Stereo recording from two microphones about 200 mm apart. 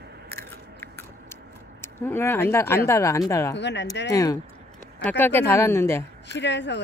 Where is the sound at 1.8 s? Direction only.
10° left (ahead or behind).